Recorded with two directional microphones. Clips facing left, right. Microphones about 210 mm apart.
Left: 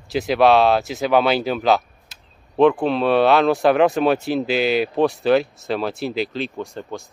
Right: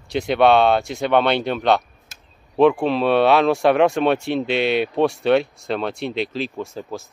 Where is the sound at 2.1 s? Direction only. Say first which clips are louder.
Right 2 dB; 45° right (ahead or behind).